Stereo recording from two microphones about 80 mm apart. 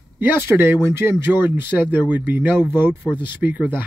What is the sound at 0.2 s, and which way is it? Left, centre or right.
Speech, right.